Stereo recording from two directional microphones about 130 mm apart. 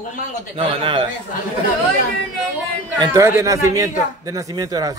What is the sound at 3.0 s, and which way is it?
A man's voice, 25° right (ahead or behind).